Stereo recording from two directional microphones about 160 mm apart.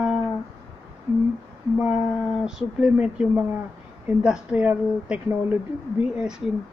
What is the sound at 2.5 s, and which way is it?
Speech, 5° right (ahead or behind).